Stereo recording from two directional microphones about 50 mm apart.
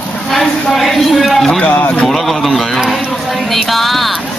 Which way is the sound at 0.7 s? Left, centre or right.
Centre.